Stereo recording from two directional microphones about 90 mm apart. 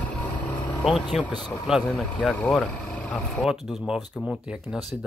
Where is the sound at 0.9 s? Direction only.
5° left (ahead or behind).